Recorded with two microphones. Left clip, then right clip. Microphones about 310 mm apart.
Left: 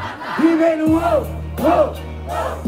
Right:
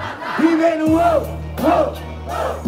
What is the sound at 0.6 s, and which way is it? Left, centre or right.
Music, centre.